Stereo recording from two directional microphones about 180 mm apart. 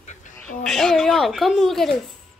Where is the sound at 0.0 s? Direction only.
40° left (ahead or behind).